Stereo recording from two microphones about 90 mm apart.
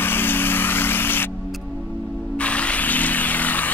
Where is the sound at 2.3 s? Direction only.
15° left (ahead or behind).